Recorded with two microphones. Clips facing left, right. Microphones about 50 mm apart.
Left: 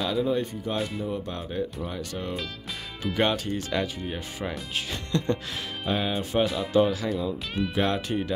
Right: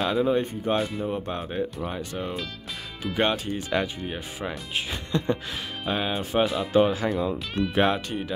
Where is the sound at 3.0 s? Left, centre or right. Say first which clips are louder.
Even; centre.